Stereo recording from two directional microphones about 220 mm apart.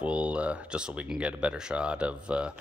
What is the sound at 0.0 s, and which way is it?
Speech, 5° right (ahead or behind).